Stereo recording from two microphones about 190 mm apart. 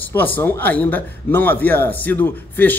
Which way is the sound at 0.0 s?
10° left (ahead or behind).